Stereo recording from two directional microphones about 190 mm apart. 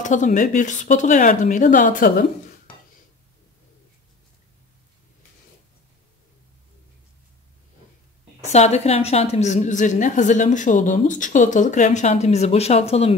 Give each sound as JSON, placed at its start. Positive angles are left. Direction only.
{"t": 0.0, "sound": "a woman's voice", "side_deg": 40}
{"t": 8.4, "sound": "a woman's voice", "side_deg": 35}